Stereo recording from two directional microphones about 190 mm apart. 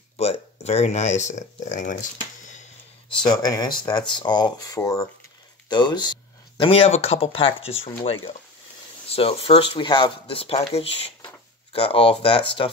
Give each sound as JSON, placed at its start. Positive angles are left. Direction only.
{"t": 0.2, "sound": "speech", "side_deg": 35}
{"t": 2.4, "sound": "a sound", "side_deg": 40}
{"t": 3.3, "sound": "speech", "side_deg": 20}